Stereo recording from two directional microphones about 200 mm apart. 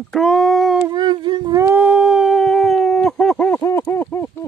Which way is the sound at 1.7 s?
5° right (ahead or behind).